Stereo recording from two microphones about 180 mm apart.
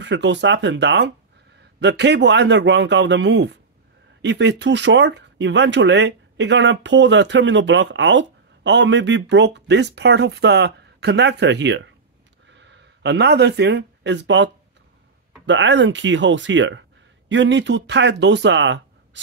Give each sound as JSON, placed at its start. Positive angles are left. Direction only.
{"t": 0.0, "sound": "speech", "side_deg": -80}